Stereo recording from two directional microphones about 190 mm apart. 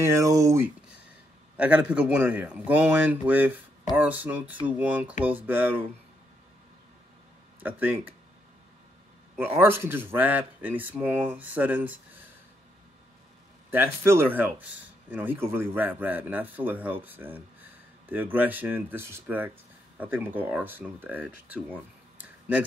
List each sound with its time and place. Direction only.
0.0 s speech: 15° right (ahead or behind)
7.6 s speech: 10° right (ahead or behind)
9.4 s speech: 10° right (ahead or behind)
13.7 s speech: 15° right (ahead or behind)
22.2 s a sound: 10° right (ahead or behind)